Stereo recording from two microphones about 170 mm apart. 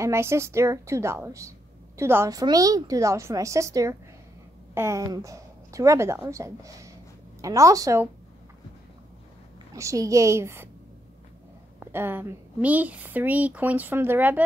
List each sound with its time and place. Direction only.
0.0 s a woman's voice: 15° right (ahead or behind)
9.8 s speech: 20° right (ahead or behind)
11.9 s speech: 10° right (ahead or behind)